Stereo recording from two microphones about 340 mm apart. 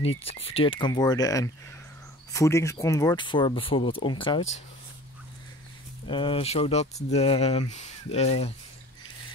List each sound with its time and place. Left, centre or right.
0.2 s speech: centre
6.0 s speech: centre